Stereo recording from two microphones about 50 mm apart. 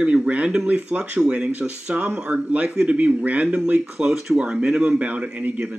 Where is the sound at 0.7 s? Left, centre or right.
Right.